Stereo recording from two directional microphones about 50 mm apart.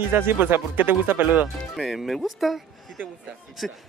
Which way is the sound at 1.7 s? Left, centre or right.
Centre.